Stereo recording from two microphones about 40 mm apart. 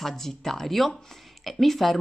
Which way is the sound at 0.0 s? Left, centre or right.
Centre.